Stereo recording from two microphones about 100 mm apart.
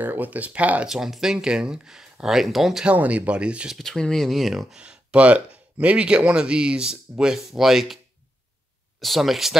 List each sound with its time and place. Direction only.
0.0 s speech: 20° right (ahead or behind)
3.7 s speech: 5° left (ahead or behind)
9.0 s speech: centre (ahead or behind)